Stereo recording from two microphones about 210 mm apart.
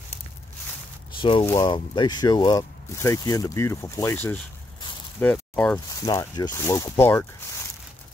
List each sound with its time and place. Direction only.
1.1 s a sound: 25° left (ahead or behind)
1.4 s speech: 15° left (ahead or behind)
6.0 s speech: 20° left (ahead or behind)